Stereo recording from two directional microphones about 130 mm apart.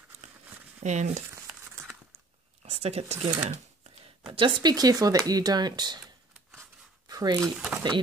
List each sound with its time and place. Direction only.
0.8 s speech: 65° right (ahead or behind)
1.3 s crumpling: 20° right (ahead or behind)
2.6 s speech: 50° right (ahead or behind)
4.3 s speech: 40° right (ahead or behind)
7.1 s speech: 30° right (ahead or behind)
7.5 s speech: 5° right (ahead or behind)